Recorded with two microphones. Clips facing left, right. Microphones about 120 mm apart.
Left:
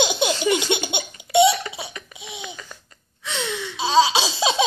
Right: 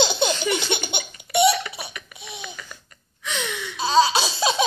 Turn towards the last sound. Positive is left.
turn(degrees=20)  # may be behind; listen again after turning